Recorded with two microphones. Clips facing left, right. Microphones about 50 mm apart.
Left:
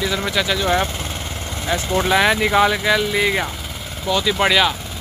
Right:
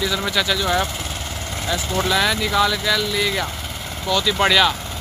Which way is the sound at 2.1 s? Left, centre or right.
Left.